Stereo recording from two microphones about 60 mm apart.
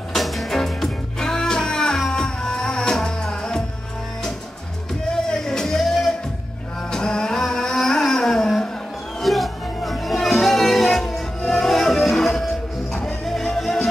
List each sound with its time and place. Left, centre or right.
0.1 s music: centre
5.1 s music: centre
6.9 s a sound: centre
9.2 s music: centre